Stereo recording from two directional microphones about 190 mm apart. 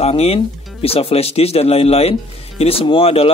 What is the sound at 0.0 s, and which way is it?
Speech, 30° left (ahead or behind).